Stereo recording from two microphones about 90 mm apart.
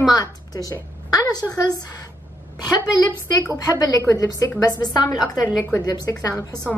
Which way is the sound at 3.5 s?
40° left (ahead or behind).